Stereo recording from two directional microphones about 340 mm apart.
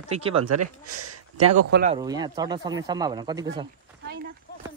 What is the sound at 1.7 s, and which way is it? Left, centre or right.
Speech, right.